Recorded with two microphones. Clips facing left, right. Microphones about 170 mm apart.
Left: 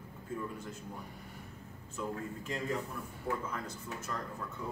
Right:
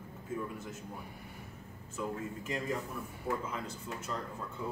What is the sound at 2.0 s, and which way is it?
A man's voice, centre (ahead or behind).